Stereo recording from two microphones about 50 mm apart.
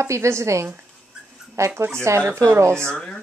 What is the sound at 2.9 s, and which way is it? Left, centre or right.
Speech, centre.